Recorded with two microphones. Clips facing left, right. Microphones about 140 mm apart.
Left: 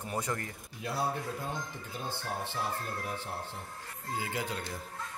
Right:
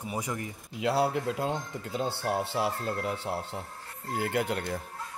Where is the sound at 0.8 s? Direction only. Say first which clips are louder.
Right 7 dB; 80° right.